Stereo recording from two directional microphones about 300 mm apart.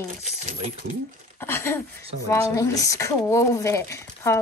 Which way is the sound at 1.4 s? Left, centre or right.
Centre.